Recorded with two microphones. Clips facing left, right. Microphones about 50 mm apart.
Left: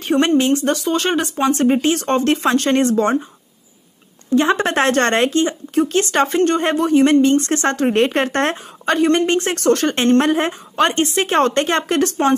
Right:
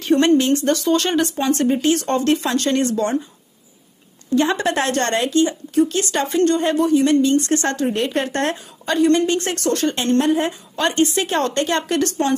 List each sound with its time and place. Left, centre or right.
0.1 s speech: centre
1.6 s speech: left
4.4 s speech: left
7.8 s a woman's voice: left
9.6 s a woman's voice: left
10.8 s speech: left